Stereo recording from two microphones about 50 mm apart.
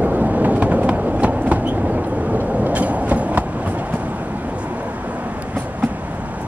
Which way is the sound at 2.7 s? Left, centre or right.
Right.